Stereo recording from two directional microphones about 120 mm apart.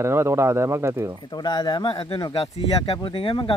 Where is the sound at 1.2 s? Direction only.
35° left (ahead or behind).